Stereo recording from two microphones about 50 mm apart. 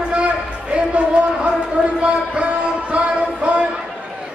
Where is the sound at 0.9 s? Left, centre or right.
Right.